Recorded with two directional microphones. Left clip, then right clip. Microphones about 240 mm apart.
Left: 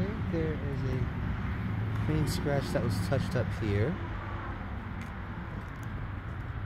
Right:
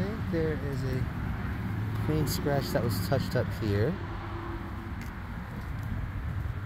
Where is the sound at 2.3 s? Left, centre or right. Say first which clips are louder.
Right 2 dB; centre.